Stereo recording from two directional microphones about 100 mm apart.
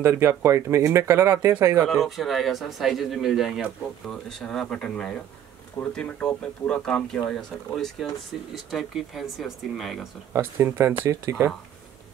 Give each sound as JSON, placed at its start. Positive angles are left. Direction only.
{"t": 0.0, "sound": "speech", "side_deg": -25}
{"t": 1.9, "sound": "speech", "side_deg": 0}
{"t": 10.3, "sound": "speech", "side_deg": -20}